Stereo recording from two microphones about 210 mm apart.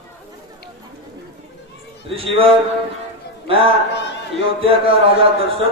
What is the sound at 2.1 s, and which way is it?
Speech, 25° right (ahead or behind).